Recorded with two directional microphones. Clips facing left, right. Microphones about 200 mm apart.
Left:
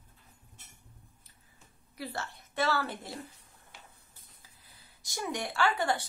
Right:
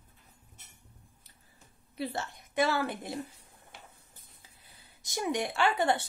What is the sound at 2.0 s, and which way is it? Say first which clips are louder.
Speech: right 4 dB; 20° right (ahead or behind).